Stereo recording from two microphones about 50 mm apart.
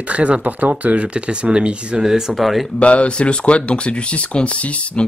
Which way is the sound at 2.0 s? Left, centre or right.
Centre.